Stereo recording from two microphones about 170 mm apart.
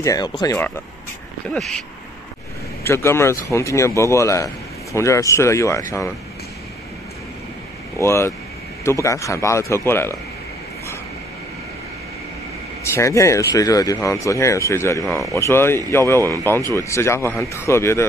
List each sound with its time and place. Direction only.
0.0 s speech: 20° left (ahead or behind)
1.5 s speech: 5° left (ahead or behind)
2.8 s speech: 15° left (ahead or behind)
8.0 s speech: 15° left (ahead or behind)
12.8 s speech: 15° left (ahead or behind)